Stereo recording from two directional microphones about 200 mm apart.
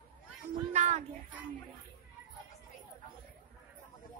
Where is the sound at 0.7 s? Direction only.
35° right (ahead or behind).